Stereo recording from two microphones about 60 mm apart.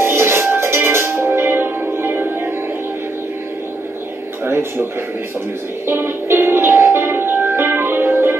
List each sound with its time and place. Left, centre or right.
0.0 s music: right
4.5 s a sound: right
5.9 s music: right